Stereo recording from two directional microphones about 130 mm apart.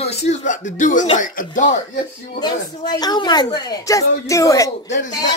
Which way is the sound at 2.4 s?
35° left (ahead or behind).